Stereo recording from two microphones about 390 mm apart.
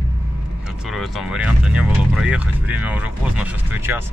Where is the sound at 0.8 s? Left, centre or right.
Centre.